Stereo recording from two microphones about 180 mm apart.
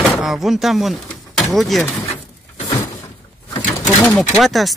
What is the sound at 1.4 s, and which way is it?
Speech, centre (ahead or behind).